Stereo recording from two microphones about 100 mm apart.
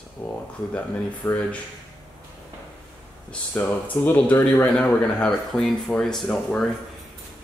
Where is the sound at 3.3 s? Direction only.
15° left (ahead or behind).